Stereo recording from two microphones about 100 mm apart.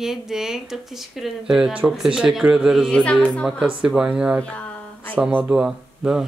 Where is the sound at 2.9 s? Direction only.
10° left (ahead or behind).